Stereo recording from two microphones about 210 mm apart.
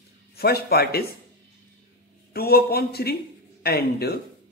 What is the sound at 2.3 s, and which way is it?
Speech, 50° left (ahead or behind).